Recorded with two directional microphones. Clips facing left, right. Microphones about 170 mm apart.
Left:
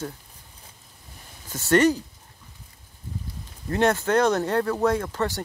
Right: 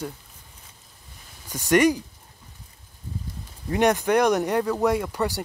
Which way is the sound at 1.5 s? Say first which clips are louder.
Even; 15° right (ahead or behind).